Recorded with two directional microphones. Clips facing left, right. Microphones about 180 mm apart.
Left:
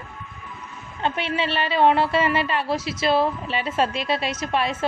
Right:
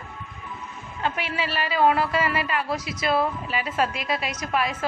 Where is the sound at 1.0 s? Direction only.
25° left (ahead or behind).